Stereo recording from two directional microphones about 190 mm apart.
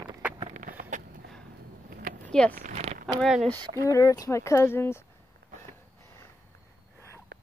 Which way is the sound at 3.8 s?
15° left (ahead or behind).